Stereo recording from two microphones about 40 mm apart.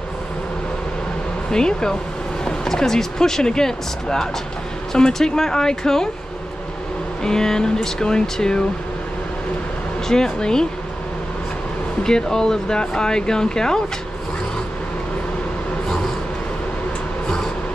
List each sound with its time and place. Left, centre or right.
1.5 s speech: centre
7.2 s speech: centre
10.0 s speech: centre
12.0 s speech: centre